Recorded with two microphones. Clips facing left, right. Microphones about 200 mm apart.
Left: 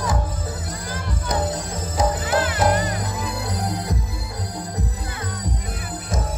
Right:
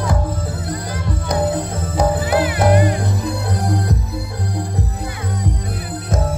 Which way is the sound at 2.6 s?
60° right (ahead or behind).